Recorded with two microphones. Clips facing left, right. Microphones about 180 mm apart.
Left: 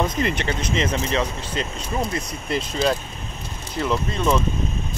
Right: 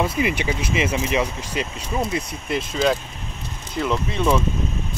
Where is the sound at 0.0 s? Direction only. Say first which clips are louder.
Right 1 dB; 10° right (ahead or behind).